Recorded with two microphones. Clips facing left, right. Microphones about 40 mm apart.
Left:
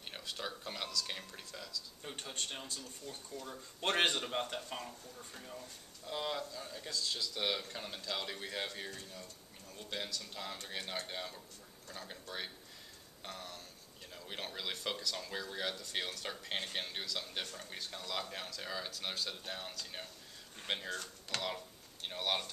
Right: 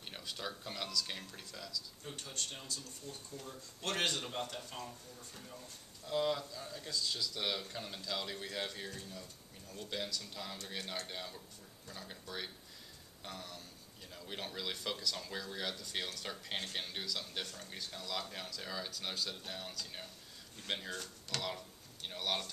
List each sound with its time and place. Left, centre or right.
0.1 s speech: centre
2.0 s speech: left